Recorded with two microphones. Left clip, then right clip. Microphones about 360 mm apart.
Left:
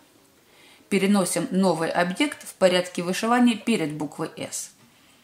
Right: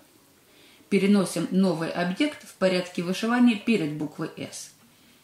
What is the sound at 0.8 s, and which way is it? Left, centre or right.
Speech, centre.